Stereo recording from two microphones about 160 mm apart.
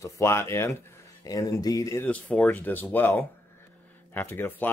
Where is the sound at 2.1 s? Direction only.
10° left (ahead or behind).